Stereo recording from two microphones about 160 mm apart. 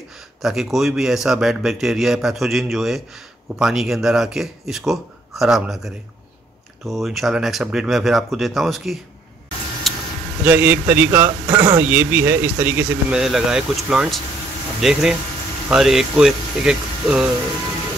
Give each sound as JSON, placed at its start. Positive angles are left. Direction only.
{"t": 0.4, "sound": "a man's voice", "side_deg": 0}
{"t": 6.9, "sound": "a man's voice", "side_deg": 0}
{"t": 9.9, "sound": "a sound", "side_deg": 0}
{"t": 10.4, "sound": "speech", "side_deg": -10}
{"t": 11.5, "sound": "speech", "side_deg": -20}
{"t": 11.8, "sound": "a man's voice", "side_deg": -10}